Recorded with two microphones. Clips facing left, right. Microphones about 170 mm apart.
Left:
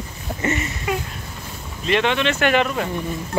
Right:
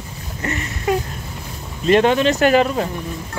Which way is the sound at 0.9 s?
45° right (ahead or behind).